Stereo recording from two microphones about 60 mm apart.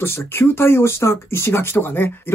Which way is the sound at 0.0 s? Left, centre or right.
Left.